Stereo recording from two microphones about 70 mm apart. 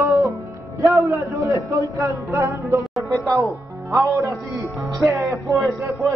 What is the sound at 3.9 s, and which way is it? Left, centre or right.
A man's voice, right.